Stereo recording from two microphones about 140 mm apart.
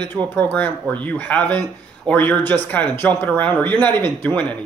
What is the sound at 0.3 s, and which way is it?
Speech, 15° left (ahead or behind).